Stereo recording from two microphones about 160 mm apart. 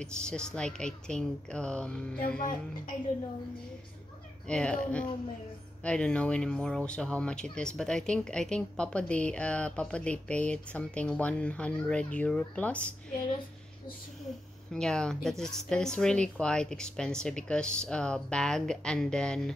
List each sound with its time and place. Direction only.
0.0 s speech: 5° left (ahead or behind)
2.1 s speech: 65° left (ahead or behind)
4.5 s speech: 5° left (ahead or behind)
14.7 s speech: 5° left (ahead or behind)